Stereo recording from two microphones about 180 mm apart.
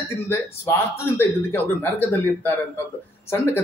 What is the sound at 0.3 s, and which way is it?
A man's voice, 15° left (ahead or behind).